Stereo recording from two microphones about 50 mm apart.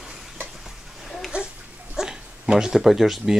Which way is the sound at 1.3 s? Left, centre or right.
Right.